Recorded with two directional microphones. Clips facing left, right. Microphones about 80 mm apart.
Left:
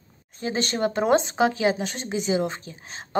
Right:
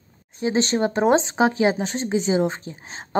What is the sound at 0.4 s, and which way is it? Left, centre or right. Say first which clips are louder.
Speech: right 4 dB; right.